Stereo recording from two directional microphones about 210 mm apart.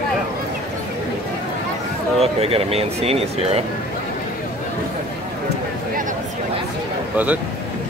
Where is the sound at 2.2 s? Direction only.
30° right (ahead or behind).